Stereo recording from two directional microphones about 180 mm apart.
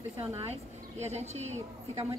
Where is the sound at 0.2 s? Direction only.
35° right (ahead or behind).